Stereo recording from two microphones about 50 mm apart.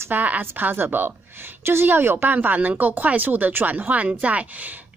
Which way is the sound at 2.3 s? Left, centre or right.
Right.